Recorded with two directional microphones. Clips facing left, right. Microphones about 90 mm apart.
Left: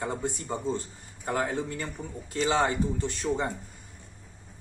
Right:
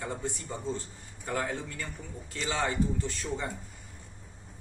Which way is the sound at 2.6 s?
20° left (ahead or behind).